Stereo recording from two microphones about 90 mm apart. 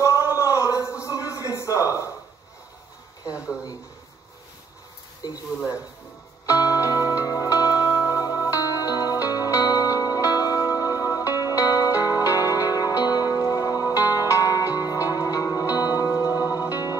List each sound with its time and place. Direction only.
0.0 s a sound: 40° left (ahead or behind)
3.3 s speech: 10° right (ahead or behind)
5.2 s speech: 45° left (ahead or behind)
6.5 s music: 40° left (ahead or behind)